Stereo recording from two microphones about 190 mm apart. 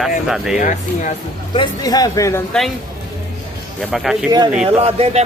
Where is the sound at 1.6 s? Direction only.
20° left (ahead or behind).